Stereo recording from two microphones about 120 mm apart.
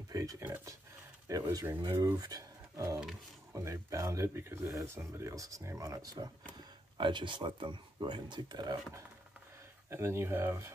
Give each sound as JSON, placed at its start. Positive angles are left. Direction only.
{"t": 0.1, "sound": "speech", "side_deg": -25}
{"t": 2.1, "sound": "speech", "side_deg": -30}
{"t": 9.8, "sound": "speech", "side_deg": -20}